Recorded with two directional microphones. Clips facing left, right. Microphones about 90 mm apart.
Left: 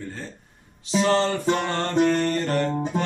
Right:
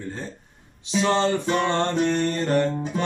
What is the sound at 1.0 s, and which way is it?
Mantra, 20° right (ahead or behind).